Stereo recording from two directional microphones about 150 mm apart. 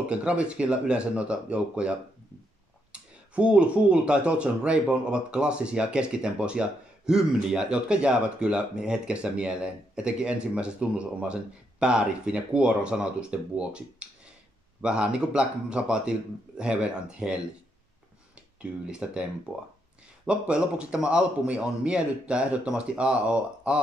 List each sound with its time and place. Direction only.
0.1 s speech: 10° right (ahead or behind)
18.6 s speech: 5° right (ahead or behind)
20.2 s speech: 5° right (ahead or behind)